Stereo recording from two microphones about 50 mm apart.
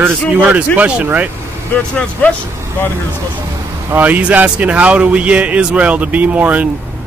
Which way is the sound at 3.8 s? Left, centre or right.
Right.